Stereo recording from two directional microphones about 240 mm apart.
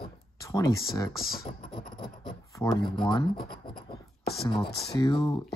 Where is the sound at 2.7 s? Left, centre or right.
Centre.